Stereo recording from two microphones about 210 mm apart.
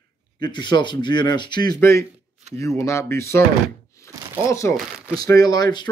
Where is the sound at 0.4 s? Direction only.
20° left (ahead or behind).